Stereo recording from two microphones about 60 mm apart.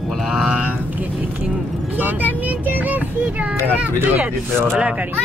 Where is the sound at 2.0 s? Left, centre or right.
Right.